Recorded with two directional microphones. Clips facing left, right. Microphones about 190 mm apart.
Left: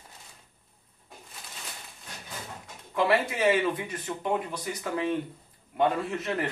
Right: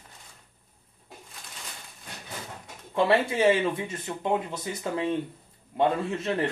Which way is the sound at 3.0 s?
25° right (ahead or behind).